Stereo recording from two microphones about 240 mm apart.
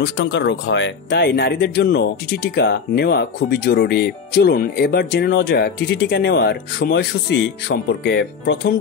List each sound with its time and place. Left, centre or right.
0.0 s speech: left